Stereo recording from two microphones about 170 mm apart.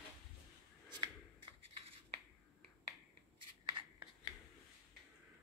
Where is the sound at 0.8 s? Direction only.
25° right (ahead or behind).